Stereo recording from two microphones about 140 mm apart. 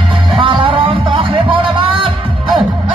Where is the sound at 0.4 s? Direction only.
40° right (ahead or behind).